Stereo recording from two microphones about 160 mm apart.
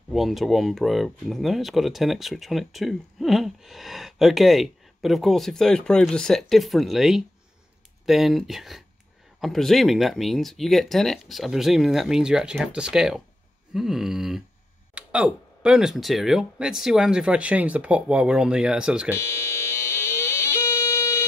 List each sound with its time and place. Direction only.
0.1 s speech: centre (ahead or behind)
19.1 s music: 15° left (ahead or behind)